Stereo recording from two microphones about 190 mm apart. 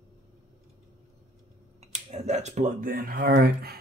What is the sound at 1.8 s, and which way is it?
Speech, 35° right (ahead or behind).